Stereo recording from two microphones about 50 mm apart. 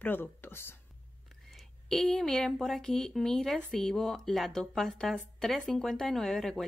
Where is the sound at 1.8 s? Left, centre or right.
Centre.